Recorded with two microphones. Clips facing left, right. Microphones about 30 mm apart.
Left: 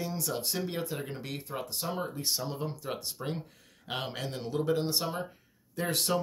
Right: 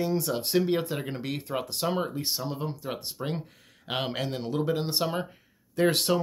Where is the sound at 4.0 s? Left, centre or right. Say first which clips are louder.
Right 7 dB; right.